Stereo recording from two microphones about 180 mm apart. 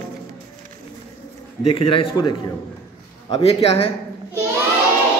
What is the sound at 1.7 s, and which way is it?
A man's voice, 30° left (ahead or behind).